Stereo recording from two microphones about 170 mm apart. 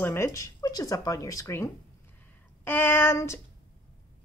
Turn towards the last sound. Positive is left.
turn(degrees=15)  # may be behind; listen again after turning